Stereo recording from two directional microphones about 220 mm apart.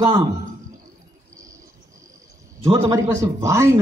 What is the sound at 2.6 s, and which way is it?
A man's voice, 20° right (ahead or behind).